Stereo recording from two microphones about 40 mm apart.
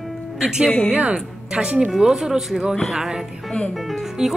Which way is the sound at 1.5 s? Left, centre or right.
Centre.